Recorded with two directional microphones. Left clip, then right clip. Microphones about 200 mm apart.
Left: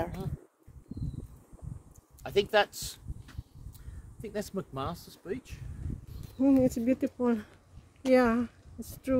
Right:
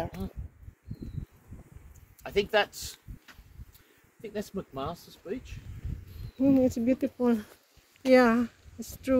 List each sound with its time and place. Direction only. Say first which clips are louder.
2.2 s speech: even; 45° left (ahead or behind)
4.2 s speech: even; 35° left (ahead or behind)
6.3 s speech: right 1 dB; 10° left (ahead or behind)